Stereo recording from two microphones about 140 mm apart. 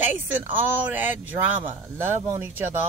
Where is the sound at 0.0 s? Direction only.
10° right (ahead or behind).